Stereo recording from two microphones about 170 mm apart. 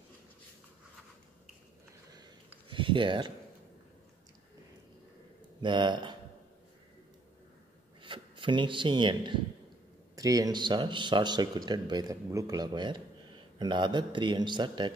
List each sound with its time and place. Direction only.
2.7 s speech: 30° right (ahead or behind)
5.6 s speech: 25° right (ahead or behind)
8.0 s speech: 30° right (ahead or behind)